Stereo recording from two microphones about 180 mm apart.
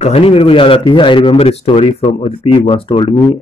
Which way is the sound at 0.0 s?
35° left (ahead or behind).